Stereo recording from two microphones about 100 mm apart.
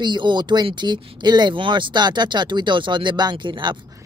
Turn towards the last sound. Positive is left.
turn(degrees=-50)  # may be behind; listen again after turning